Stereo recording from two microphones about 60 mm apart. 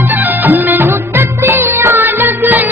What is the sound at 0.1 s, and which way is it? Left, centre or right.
Music of bollywood, right.